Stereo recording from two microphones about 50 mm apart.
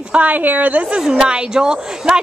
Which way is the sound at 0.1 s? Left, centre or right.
Right.